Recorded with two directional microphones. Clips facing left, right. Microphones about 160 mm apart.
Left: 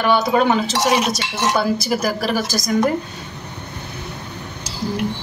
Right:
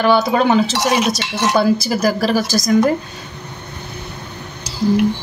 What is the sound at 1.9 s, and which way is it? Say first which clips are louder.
Speech: right 3 dB; 35° right (ahead or behind).